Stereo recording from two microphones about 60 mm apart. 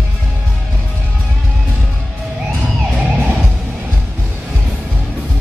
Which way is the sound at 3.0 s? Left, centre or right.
Right.